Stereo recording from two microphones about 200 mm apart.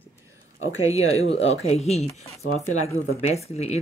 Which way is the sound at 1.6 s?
30° left (ahead or behind).